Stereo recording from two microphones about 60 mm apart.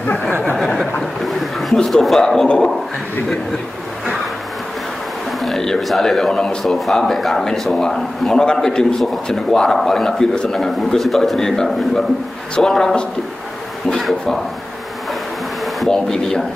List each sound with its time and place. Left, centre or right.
1.2 s a sound: centre
1.8 s speech: centre
5.4 s speech: centre
15.9 s speech: centre